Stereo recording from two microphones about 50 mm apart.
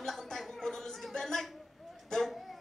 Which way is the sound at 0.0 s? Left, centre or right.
Centre.